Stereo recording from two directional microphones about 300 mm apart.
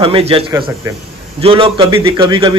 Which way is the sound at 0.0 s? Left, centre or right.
Centre.